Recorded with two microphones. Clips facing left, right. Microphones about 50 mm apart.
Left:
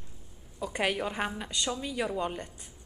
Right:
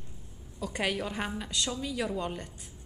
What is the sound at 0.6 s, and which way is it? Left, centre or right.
A woman's voice, centre.